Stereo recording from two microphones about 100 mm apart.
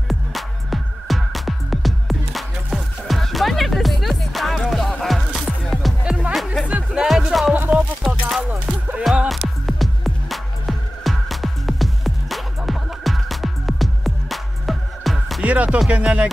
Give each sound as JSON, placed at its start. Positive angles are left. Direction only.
{"t": 0.1, "sound": "music", "side_deg": 0}
{"t": 7.5, "sound": "music", "side_deg": -15}
{"t": 9.0, "sound": "music", "side_deg": -5}
{"t": 15.4, "sound": "music", "side_deg": -15}